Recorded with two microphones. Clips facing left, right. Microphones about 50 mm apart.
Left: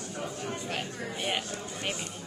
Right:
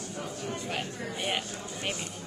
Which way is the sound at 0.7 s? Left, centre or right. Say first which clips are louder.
Even; centre.